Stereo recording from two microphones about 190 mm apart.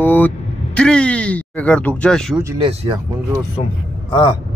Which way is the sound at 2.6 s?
25° right (ahead or behind).